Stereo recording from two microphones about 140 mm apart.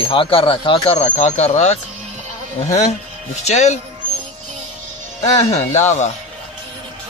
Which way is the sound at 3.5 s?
55° left (ahead or behind).